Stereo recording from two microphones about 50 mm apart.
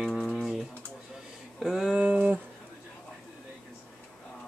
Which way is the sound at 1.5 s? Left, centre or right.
Centre.